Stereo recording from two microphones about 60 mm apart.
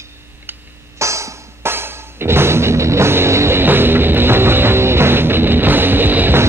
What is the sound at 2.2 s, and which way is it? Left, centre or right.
Music, right.